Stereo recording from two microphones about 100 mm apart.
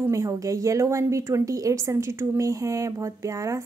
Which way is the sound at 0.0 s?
30° right (ahead or behind).